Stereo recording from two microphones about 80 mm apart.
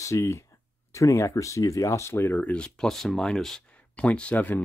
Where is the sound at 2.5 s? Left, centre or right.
Centre.